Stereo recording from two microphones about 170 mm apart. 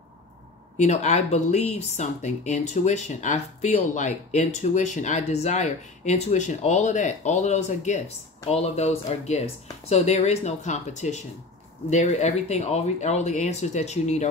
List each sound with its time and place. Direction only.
0.7 s speech: 45° left (ahead or behind)